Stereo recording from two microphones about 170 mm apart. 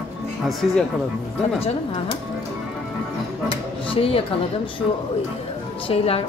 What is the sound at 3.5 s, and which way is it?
Speech, 35° left (ahead or behind).